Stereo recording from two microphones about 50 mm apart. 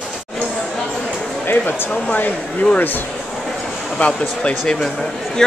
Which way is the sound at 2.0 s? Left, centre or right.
Left.